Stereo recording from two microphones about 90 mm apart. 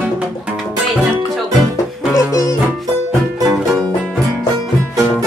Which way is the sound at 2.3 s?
40° left (ahead or behind).